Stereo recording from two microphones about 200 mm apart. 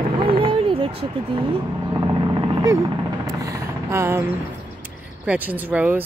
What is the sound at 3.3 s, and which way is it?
Vehicle, 15° right (ahead or behind).